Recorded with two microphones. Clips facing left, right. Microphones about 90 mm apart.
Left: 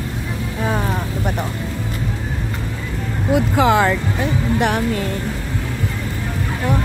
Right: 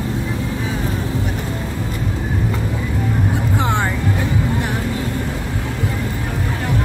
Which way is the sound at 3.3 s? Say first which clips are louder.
Left 10 dB; 90° left.